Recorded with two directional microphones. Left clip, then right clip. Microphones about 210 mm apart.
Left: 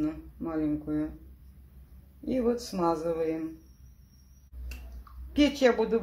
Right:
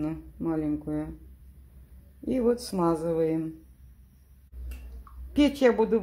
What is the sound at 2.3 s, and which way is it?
A woman's voice, 40° right (ahead or behind).